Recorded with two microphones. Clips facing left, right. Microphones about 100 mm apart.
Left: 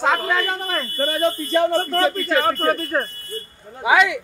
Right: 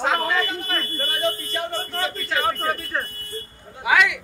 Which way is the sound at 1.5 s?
90° left.